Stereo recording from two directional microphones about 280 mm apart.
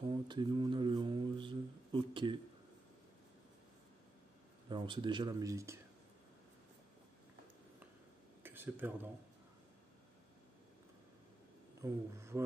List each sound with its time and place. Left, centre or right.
0.0 s speech: centre
4.6 s speech: centre
8.4 s a sound: centre
11.8 s speech: centre